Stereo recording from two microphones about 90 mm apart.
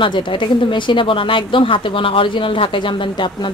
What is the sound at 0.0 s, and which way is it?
Speech, 65° left (ahead or behind).